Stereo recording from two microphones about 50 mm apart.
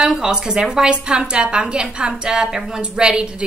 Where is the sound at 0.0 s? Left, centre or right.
Centre.